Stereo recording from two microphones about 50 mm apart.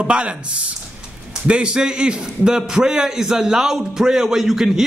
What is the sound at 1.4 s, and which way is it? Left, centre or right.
A man's voice, right.